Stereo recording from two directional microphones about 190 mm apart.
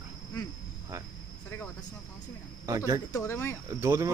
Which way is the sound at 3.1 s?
15° left (ahead or behind).